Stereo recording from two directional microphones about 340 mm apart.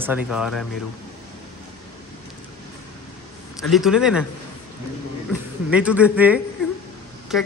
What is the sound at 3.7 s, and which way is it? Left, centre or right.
Speech, centre.